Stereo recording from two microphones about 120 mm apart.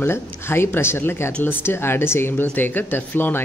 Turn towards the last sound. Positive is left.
turn(degrees=15)  # may be behind; listen again after turning